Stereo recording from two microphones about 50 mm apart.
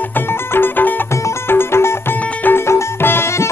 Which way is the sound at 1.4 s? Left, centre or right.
Left.